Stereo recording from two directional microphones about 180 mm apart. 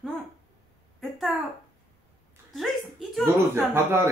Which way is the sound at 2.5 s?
Centre (ahead or behind).